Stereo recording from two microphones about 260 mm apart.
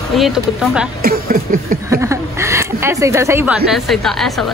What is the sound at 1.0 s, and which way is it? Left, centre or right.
Speech, right.